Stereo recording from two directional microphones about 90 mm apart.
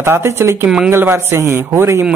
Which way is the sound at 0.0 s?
25° right (ahead or behind).